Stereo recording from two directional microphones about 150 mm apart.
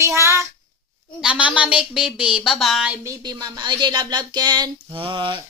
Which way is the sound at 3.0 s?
25° right (ahead or behind).